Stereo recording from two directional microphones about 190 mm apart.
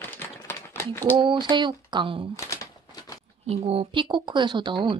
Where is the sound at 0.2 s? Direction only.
10° left (ahead or behind).